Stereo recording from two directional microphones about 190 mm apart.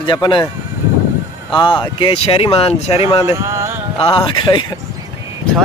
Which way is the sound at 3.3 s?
15° right (ahead or behind).